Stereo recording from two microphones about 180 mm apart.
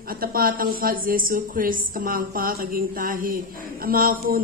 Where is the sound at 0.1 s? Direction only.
55° right (ahead or behind).